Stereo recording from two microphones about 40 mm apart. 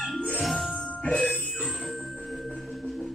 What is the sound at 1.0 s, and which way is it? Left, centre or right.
Music, left.